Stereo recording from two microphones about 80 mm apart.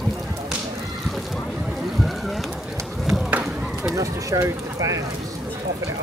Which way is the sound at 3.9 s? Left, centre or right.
Right.